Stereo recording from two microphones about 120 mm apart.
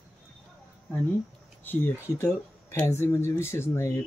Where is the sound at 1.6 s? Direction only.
15° left (ahead or behind).